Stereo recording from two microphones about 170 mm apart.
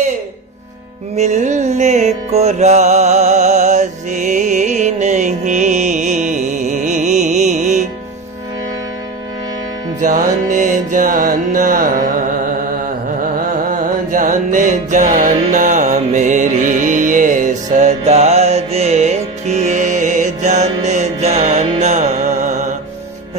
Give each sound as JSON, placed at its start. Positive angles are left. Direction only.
{"t": 1.1, "sound": "music", "side_deg": -45}
{"t": 9.9, "sound": "music", "side_deg": -50}
{"t": 13.7, "sound": "music", "side_deg": -50}